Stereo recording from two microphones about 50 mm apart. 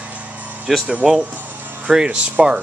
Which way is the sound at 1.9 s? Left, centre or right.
Centre.